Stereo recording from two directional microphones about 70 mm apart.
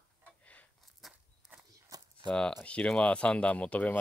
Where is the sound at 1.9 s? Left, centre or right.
Right.